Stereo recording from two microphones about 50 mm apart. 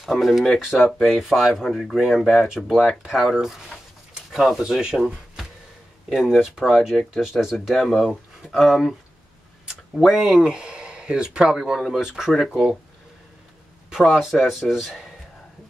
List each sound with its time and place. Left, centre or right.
0.0 s speech: centre
0.9 s speech: centre
1.3 s speech: centre
4.6 s speech: centre
5.0 s a sound: centre
6.2 s speech: centre
10.0 s speech: centre
13.8 s speech: centre